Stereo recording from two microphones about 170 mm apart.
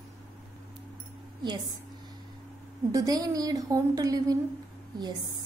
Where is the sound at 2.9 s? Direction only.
20° right (ahead or behind).